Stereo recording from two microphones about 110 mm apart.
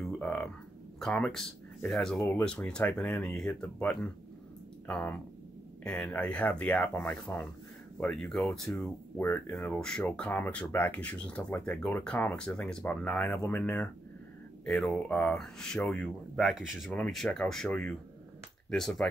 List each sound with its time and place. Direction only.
0.2 s a sound: 10° left (ahead or behind)
0.9 s speech: 5° left (ahead or behind)
2.1 s speech: 15° left (ahead or behind)
6.2 s speech: 10° left (ahead or behind)
9.2 s speech: 20° left (ahead or behind)
9.8 s speech: 5° left (ahead or behind)
14.6 s speech: 5° left (ahead or behind)